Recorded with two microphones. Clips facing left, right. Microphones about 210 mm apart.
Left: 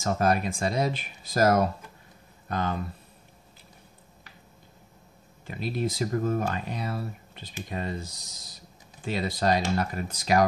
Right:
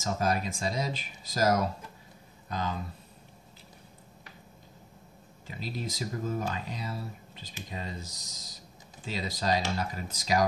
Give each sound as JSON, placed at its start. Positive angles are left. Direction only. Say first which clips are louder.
{"t": 0.0, "sound": "speech", "louder": "left 5 dB", "side_deg": 60}
{"t": 5.5, "sound": "speech", "louder": "left 7 dB", "side_deg": 60}